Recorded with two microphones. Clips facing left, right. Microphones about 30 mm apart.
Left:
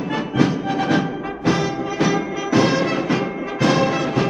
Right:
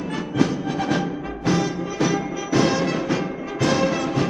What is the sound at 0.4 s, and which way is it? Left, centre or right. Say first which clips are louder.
Music: left 2 dB; centre.